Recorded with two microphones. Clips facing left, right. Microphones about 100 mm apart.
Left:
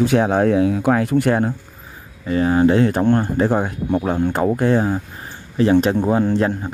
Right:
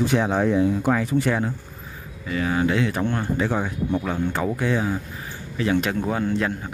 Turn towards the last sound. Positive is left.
turn(degrees=35)  # may be behind; listen again after turning